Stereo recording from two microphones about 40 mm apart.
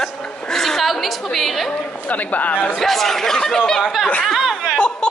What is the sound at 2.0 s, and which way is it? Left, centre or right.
Speech, left.